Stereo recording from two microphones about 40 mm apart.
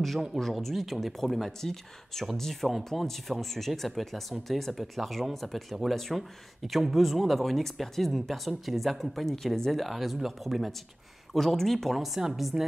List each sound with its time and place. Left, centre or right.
0.4 s speech: centre
12.0 s speech: centre
12.5 s a woman's voice: centre